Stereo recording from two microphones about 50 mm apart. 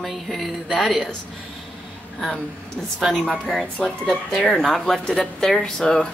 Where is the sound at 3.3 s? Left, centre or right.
Centre.